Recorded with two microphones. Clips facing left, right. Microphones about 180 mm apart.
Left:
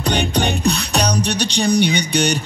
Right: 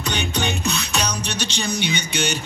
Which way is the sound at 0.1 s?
35° left (ahead or behind).